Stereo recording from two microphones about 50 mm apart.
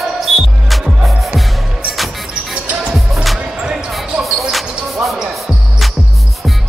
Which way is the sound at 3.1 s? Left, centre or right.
Centre.